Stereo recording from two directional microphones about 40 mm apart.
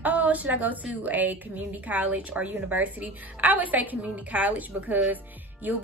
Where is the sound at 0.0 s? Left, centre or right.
Right.